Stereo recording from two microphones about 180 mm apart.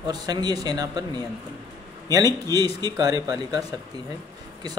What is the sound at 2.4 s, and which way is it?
A man's voice, 20° right (ahead or behind).